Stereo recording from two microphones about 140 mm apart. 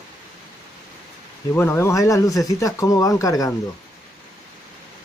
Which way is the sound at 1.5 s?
15° left (ahead or behind).